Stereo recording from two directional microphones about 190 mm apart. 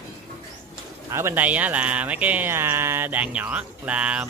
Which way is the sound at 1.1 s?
15° right (ahead or behind).